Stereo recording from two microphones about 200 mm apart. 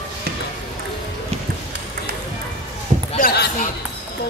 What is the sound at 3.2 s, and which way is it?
Basketball bounce, 55° left (ahead or behind).